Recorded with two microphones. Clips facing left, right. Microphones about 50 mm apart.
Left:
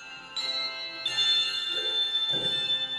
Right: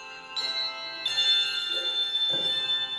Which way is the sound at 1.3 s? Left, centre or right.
Centre.